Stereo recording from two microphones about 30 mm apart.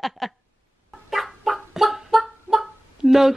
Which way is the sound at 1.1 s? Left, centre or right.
Centre.